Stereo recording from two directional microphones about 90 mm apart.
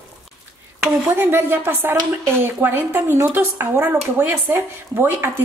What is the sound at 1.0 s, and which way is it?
Speech, 25° right (ahead or behind).